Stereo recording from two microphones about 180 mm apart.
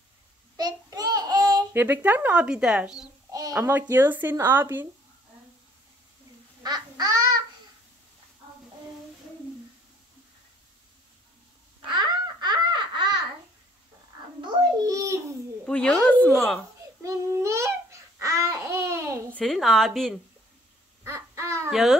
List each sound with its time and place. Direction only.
0.6 s babbling: 20° right (ahead or behind); by 2.9 s 5° right (ahead or behind)
3.3 s a sound: 20° right (ahead or behind)
3.9 s speech: 10° right (ahead or behind)
6.6 s duck: 20° right (ahead or behind)
11.9 s babbling: 25° right (ahead or behind)
14.4 s babbling: 20° right (ahead or behind)
15.6 s a sound: 5° left (ahead or behind)
17.0 s babbling: 15° right (ahead or behind)
19.3 s a woman's voice: centre (ahead or behind)
21.0 s a sound: 15° right (ahead or behind)
21.6 s a child's voice: centre (ahead or behind)